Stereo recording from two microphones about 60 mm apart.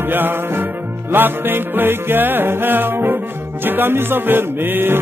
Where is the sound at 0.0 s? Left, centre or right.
Right.